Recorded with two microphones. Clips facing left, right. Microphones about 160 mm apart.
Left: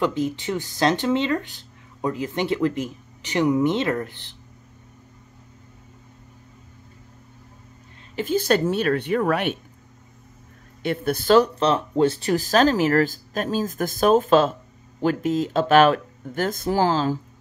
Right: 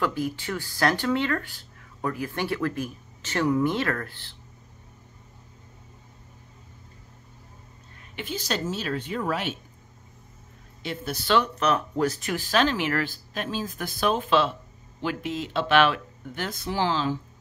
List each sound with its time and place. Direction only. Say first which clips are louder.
0.0 s speech: left 4 dB; 20° left (ahead or behind)
8.2 s a woman's voice: left 10 dB; 50° left (ahead or behind)
10.8 s speech: left 8 dB; 55° left (ahead or behind)